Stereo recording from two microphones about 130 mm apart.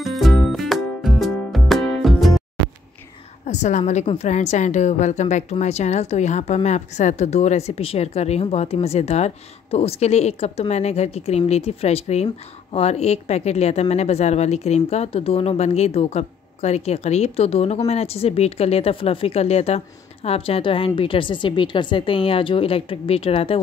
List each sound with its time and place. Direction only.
0.0 s music: centre (ahead or behind)
3.4 s a woman's voice: 65° left (ahead or behind); by 23.6 s 45° left (ahead or behind)